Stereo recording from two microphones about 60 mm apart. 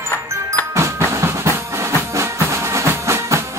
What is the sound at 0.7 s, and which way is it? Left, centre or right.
Music, right.